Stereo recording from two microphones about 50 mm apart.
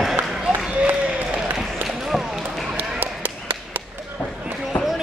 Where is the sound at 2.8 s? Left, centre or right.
Right.